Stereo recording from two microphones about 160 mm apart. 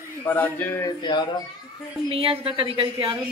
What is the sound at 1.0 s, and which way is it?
Speech, 30° left (ahead or behind).